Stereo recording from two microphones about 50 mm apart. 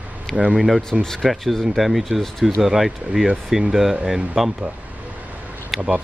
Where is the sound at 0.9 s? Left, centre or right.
Centre.